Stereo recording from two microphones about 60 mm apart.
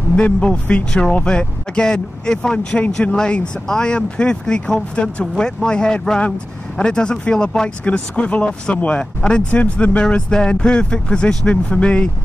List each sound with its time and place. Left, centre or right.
0.1 s speech: centre